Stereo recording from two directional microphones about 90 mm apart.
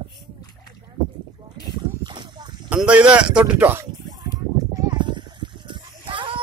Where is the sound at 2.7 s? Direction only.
15° right (ahead or behind).